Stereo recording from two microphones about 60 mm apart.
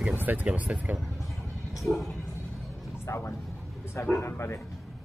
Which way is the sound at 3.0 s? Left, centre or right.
Left.